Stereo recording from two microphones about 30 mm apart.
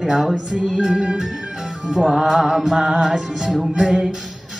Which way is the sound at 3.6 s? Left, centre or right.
Centre.